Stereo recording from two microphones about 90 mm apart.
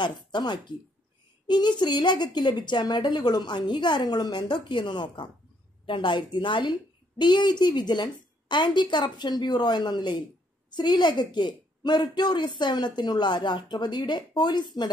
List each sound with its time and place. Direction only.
0.0 s a woman's voice: 55° left (ahead or behind)